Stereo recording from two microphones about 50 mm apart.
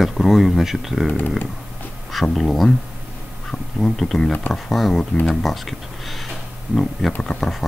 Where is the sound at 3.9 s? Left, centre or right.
Centre.